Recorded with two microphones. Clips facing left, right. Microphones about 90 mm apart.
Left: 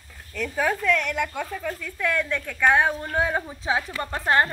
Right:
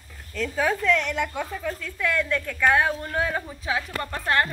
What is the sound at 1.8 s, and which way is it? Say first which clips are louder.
A woman's voice: even; 5° left (ahead or behind).